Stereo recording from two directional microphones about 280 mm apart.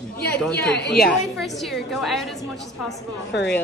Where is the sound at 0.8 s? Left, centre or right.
Left.